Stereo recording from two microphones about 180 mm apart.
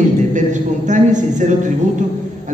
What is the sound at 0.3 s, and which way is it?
A man's voice, 45° right (ahead or behind).